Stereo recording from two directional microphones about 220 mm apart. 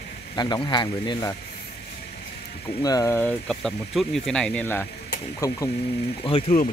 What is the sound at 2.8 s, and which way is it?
Speech, 15° left (ahead or behind).